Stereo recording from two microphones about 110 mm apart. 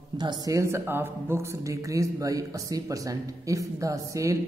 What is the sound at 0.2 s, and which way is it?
A man's voice, 35° right (ahead or behind).